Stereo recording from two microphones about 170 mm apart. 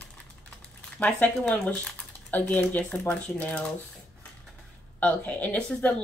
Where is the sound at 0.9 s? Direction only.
5° left (ahead or behind).